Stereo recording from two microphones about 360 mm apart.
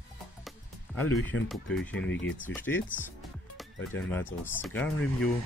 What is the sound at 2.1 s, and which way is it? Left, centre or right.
Speech, left.